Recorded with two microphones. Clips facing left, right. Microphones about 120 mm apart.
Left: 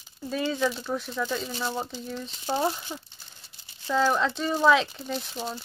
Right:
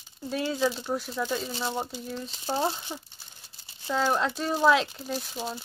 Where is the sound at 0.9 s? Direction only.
5° right (ahead or behind).